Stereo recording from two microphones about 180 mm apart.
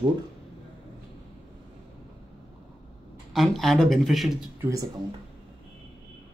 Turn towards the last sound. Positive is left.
turn(degrees=-15)  # may be behind; listen again after turning